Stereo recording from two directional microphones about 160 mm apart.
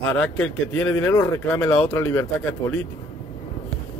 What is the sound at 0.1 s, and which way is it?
Speech, 5° left (ahead or behind).